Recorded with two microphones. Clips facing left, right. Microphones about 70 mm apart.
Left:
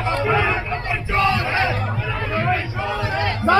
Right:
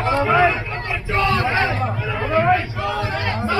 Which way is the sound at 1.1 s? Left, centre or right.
Left.